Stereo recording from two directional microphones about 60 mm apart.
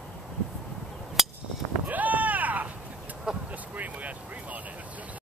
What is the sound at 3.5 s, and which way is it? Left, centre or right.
Vehicle, right.